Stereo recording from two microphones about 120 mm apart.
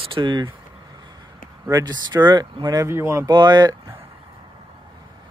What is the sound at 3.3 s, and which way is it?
Speech, 35° right (ahead or behind).